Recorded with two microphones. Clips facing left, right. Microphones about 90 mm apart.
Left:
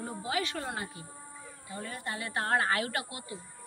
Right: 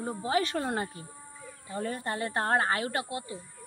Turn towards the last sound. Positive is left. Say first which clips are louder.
# right 4 dB
turn(degrees=-30)  # may be behind; listen again after turning